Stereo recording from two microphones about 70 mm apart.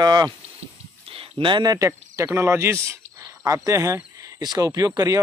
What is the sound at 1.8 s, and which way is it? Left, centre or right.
Speech, right.